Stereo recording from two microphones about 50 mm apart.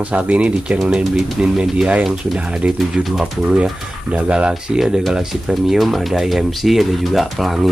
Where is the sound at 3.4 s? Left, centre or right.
Centre.